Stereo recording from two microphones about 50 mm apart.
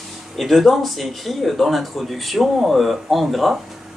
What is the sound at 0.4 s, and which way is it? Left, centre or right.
Speech, centre.